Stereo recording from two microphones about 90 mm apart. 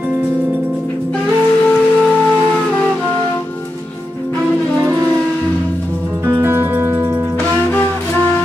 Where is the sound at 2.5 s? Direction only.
15° left (ahead or behind).